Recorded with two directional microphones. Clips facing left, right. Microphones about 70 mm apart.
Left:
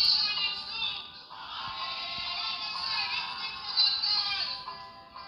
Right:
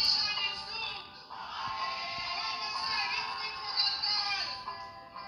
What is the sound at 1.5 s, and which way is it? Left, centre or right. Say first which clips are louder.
Music: right 2 dB; centre.